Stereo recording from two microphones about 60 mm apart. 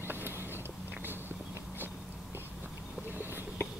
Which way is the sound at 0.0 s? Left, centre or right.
Right.